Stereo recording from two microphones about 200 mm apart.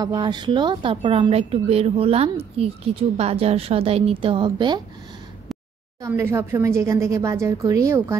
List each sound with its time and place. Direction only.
0.0 s a woman's voice: 20° right (ahead or behind)
6.0 s a woman's voice: 15° right (ahead or behind)